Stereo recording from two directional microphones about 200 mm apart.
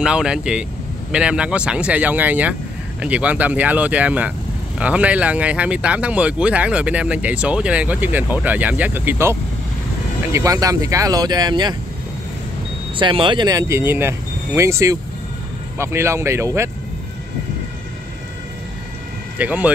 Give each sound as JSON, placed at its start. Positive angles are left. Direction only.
{"t": 0.0, "sound": "speech", "side_deg": -5}
{"t": 12.9, "sound": "speech", "side_deg": -25}
{"t": 19.3, "sound": "speech", "side_deg": -5}